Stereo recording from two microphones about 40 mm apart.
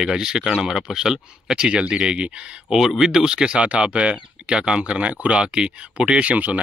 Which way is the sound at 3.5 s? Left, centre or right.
Right.